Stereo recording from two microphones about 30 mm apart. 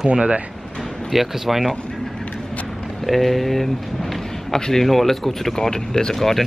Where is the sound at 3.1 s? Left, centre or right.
Centre.